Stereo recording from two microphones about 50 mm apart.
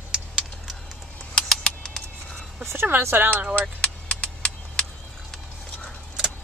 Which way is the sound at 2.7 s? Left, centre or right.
Right.